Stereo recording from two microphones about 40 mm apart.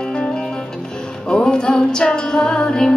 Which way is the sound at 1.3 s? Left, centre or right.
Centre.